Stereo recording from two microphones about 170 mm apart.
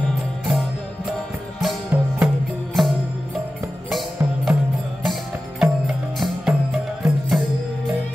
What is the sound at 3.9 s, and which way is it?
Music, centre (ahead or behind).